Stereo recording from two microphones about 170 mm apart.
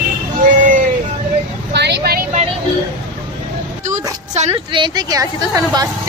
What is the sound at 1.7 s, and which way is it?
Vehicle, 90° right.